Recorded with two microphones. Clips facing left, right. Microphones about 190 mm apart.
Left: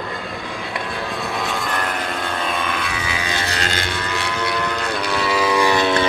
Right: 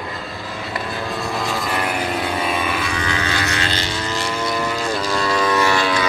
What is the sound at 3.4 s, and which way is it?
Vehicle, 40° left (ahead or behind).